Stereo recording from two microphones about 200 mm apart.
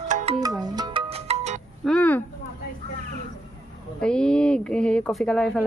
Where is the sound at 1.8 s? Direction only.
5° left (ahead or behind).